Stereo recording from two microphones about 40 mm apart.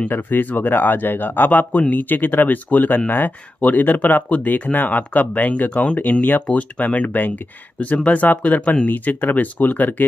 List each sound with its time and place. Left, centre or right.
0.1 s speech: left
3.6 s speech: left